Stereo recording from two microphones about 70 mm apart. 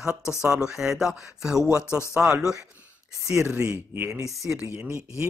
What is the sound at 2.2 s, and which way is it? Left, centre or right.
Speech, right.